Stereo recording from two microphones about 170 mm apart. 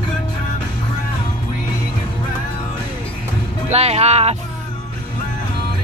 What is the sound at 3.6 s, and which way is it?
Speech, 40° right (ahead or behind).